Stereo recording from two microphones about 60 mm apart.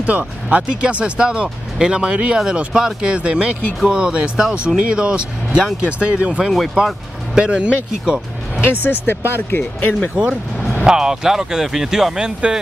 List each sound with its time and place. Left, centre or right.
0.0 s speech: right
8.5 s speech: left
10.8 s speech: centre